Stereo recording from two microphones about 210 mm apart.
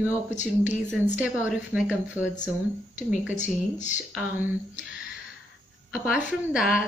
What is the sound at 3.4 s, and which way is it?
Speech, 35° left (ahead or behind).